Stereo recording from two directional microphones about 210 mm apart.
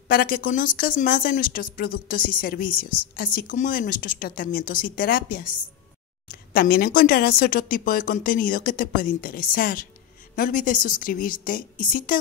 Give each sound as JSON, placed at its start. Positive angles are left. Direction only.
{"t": 0.1, "sound": "speech", "side_deg": 45}
{"t": 6.5, "sound": "a woman's voice", "side_deg": 45}